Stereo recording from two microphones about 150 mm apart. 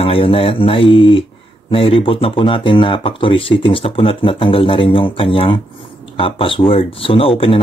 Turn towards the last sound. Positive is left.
turn(degrees=35)  # may be behind; listen again after turning